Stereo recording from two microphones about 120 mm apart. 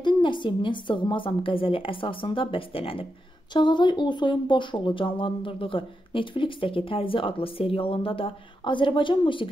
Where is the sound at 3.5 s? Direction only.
40° left (ahead or behind).